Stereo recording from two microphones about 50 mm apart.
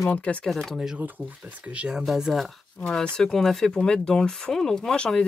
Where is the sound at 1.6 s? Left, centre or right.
Right.